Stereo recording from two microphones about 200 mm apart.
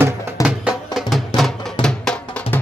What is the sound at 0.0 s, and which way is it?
Music, 5° right (ahead or behind).